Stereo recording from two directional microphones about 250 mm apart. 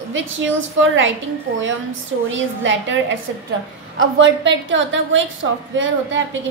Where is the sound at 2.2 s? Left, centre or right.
Right.